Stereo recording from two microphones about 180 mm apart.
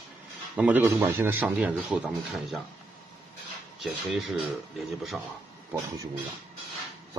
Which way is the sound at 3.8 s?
Centre (ahead or behind).